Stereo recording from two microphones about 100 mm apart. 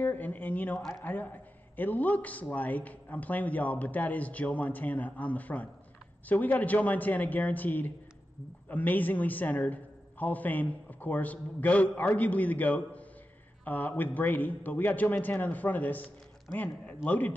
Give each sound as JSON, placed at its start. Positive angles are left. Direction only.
{"t": 0.0, "sound": "a man's voice", "side_deg": 15}